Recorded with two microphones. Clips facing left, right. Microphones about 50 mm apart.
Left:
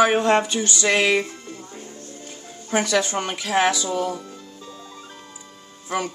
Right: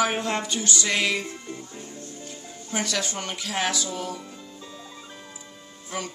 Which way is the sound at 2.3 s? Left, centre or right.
Left.